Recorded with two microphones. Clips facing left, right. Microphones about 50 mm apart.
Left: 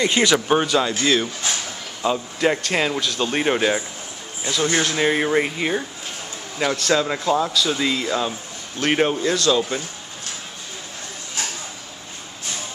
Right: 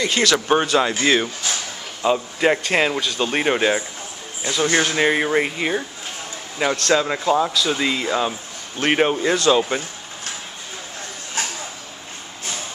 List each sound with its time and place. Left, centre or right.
0.0 s speech: centre
0.5 s speech: centre
9.3 s speech: right